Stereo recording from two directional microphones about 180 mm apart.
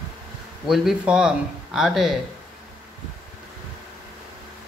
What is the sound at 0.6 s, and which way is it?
Speech, centre (ahead or behind).